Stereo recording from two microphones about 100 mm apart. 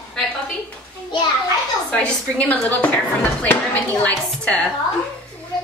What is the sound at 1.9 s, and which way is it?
Speech, 15° left (ahead or behind).